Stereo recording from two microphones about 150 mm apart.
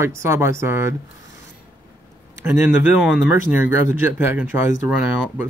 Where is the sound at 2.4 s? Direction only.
10° right (ahead or behind).